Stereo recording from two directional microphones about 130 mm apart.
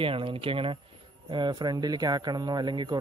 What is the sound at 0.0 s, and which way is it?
Speech, 45° right (ahead or behind).